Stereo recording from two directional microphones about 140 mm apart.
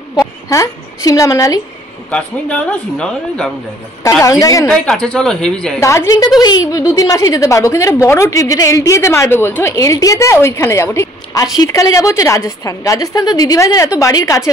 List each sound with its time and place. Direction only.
0.2 s a woman's voice: 25° left (ahead or behind)
2.0 s a man's voice: 10° left (ahead or behind)
4.2 s a woman's voice: 25° left (ahead or behind)
4.6 s a woman's voice: 5° left (ahead or behind)
5.8 s a woman's voice: 20° left (ahead or behind)